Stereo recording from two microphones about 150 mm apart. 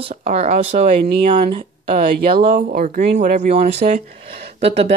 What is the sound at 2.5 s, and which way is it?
Speech, 70° right (ahead or behind).